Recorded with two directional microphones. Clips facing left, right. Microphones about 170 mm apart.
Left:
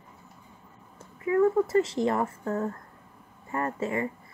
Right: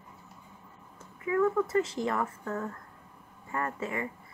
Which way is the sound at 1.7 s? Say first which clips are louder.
Left 4 dB; 30° left (ahead or behind).